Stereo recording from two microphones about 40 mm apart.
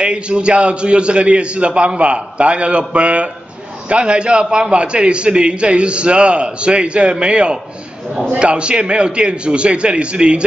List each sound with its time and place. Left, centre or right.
0.0 s a man's voice: right